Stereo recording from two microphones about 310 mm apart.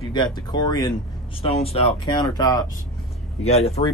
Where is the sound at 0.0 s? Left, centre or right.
Centre.